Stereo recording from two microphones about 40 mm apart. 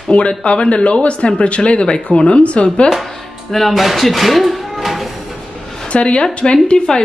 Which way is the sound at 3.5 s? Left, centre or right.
Centre.